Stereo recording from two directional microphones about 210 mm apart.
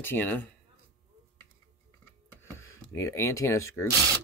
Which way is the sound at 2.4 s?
10° left (ahead or behind).